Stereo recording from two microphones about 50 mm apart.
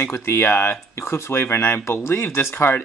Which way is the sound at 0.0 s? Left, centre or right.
Left.